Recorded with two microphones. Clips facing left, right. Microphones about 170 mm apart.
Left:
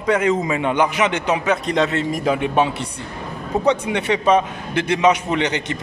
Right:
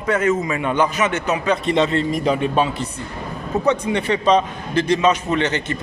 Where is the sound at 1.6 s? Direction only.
Centre (ahead or behind).